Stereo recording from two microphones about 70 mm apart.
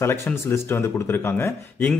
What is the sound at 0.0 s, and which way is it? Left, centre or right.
A man's voice, left.